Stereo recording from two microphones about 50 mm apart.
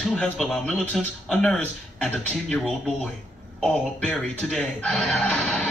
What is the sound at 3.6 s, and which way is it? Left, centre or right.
Speech, centre.